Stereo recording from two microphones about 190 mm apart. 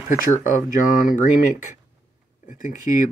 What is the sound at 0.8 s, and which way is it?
Speech, 45° left (ahead or behind).